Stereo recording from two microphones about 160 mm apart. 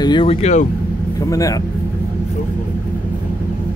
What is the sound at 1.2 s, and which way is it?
Speech, 20° left (ahead or behind).